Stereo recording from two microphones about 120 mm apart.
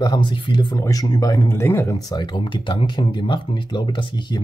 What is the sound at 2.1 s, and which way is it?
Speech, 40° left (ahead or behind).